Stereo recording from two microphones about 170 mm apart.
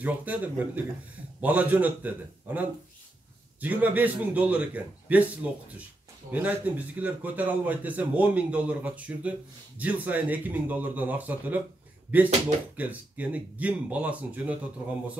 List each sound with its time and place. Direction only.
0.0 s a man's voice: 10° right (ahead or behind)
12.7 s a man's voice: 10° right (ahead or behind)